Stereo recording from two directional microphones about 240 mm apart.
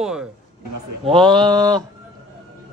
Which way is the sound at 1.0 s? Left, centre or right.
Centre.